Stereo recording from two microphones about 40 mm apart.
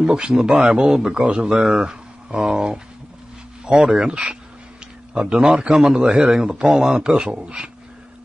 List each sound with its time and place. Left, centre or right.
0.0 s speech: right